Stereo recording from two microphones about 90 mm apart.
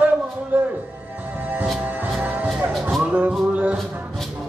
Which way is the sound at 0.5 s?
20° right (ahead or behind).